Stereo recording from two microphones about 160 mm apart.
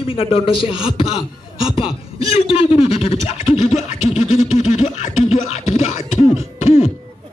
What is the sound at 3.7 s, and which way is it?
Scratch, 50° left (ahead or behind).